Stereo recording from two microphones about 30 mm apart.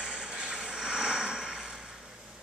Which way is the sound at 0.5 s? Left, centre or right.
Right.